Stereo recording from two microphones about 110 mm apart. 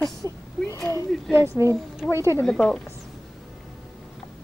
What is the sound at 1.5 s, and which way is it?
Speech, 25° right (ahead or behind).